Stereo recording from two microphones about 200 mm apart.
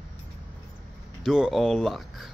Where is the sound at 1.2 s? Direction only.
Centre (ahead or behind).